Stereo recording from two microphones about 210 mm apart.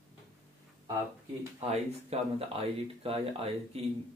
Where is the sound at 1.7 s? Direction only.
30° right (ahead or behind).